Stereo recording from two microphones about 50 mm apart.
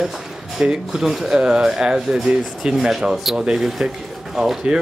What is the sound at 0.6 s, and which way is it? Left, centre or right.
Speech, centre.